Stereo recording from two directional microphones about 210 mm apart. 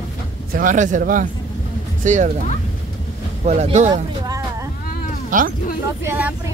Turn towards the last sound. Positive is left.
turn(degrees=-10)  # may be behind; listen again after turning